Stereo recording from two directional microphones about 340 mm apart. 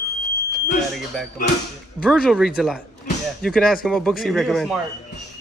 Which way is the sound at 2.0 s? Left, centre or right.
Centre.